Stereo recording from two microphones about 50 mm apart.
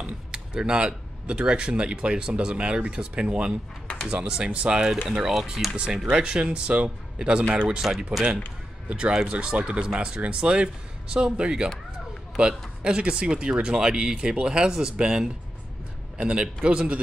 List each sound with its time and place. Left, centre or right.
0.3 s speech: centre
3.8 s a sound: centre
4.1 s speech: centre
5.3 s speech: centre
5.8 s speech: centre
8.8 s speech: right